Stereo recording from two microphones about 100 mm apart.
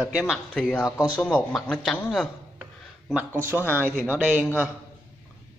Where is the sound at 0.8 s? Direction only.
30° left (ahead or behind).